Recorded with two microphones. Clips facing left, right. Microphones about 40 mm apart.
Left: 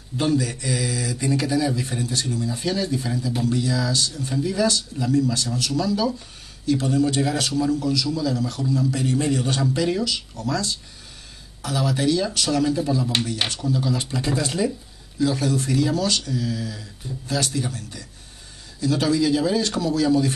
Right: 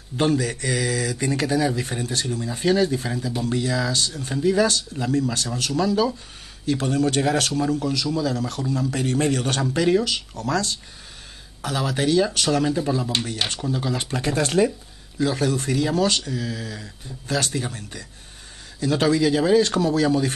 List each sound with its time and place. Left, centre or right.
0.2 s a man's voice: right
11.6 s speech: right
15.1 s speech: right